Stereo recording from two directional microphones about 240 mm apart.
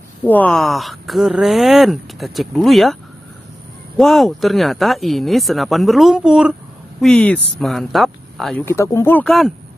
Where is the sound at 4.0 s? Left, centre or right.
Centre.